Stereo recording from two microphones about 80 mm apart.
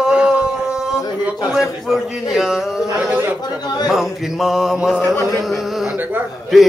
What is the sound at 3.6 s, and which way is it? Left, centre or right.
Speech, left.